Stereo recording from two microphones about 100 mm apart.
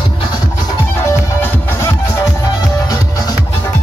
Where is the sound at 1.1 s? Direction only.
30° left (ahead or behind).